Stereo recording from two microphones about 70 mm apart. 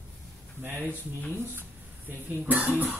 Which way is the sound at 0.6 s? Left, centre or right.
Right.